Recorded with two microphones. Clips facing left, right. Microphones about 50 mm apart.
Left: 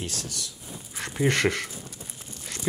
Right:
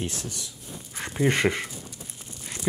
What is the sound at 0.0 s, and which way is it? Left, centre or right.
Speech, right.